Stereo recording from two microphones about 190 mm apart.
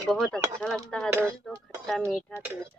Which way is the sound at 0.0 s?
Centre (ahead or behind).